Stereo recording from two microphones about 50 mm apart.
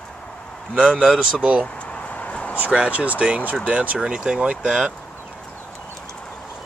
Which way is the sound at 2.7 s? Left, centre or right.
Right.